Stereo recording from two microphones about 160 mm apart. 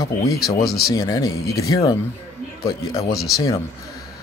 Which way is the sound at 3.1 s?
Centre (ahead or behind).